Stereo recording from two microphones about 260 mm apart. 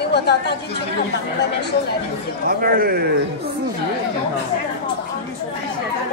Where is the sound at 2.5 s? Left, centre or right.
Right.